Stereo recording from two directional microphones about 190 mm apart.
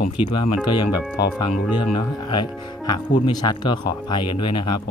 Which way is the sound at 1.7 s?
25° left (ahead or behind).